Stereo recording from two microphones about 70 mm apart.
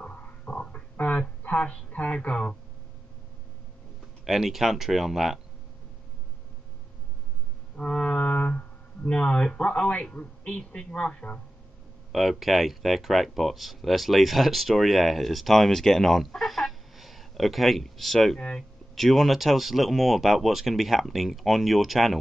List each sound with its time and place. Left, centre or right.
0.0 s a sound: centre
4.2 s speech: centre
7.7 s music: centre
10.6 s speech: centre
12.1 s speech: centre